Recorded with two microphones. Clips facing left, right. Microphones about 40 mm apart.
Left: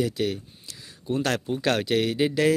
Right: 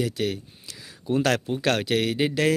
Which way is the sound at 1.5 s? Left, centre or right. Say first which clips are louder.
Even; right.